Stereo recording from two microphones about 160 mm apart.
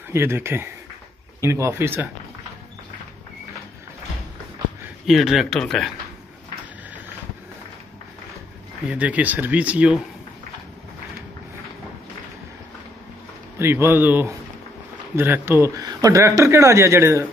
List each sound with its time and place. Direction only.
0.1 s speech: 15° right (ahead or behind)
5.0 s speech: centre (ahead or behind)
8.9 s speech: 10° right (ahead or behind)
13.6 s speech: 15° right (ahead or behind)